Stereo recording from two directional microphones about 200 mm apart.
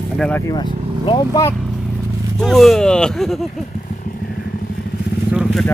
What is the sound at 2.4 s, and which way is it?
Speech, centre (ahead or behind).